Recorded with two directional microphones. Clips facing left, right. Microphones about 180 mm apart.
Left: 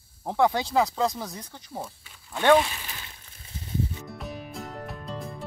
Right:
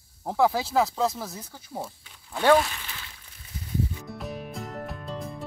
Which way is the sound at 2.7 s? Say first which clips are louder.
Left 1 dB; 15° left (ahead or behind).